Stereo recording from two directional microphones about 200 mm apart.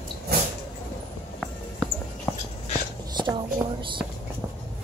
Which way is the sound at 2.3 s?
10° left (ahead or behind).